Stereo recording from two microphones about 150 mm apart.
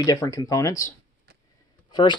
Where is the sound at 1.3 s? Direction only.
90° right.